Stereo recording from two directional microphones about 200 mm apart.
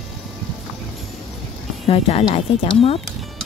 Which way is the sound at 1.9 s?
30° left (ahead or behind).